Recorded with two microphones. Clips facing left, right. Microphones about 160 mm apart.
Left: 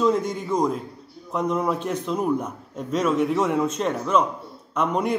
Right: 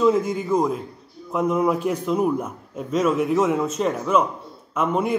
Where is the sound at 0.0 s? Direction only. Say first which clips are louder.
Right 3 dB; 5° right (ahead or behind).